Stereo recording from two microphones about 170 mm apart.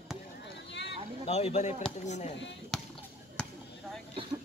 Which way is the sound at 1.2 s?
40° left (ahead or behind).